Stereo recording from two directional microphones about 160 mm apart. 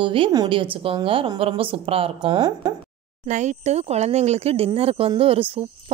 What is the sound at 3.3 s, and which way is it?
A woman's voice, 45° right (ahead or behind).